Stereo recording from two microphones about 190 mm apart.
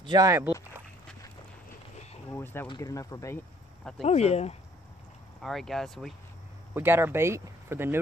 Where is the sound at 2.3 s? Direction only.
10° left (ahead or behind).